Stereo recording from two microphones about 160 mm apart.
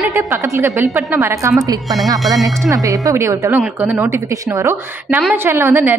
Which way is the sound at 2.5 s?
20° right (ahead or behind).